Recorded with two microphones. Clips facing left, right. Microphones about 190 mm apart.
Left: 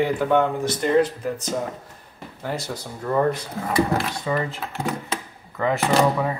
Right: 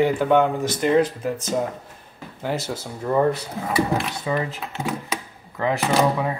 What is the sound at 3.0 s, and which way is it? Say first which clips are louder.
Speech: right 1 dB; 15° right (ahead or behind).